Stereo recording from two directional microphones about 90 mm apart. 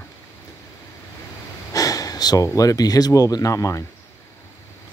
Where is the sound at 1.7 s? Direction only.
45° left (ahead or behind).